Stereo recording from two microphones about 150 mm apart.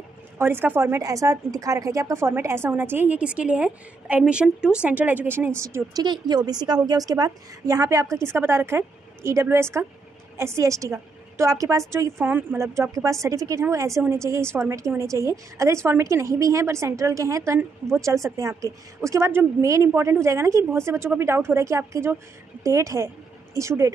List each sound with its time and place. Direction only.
0.4 s a woman's voice: 15° right (ahead or behind)
6.0 s a woman's voice: 30° right (ahead or behind)